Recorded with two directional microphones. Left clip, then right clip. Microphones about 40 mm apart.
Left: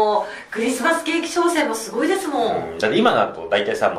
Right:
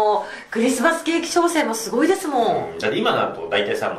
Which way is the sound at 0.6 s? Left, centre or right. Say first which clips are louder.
Right 1 dB; right.